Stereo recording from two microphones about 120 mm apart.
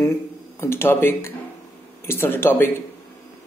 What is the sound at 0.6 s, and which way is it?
Speech, 20° left (ahead or behind).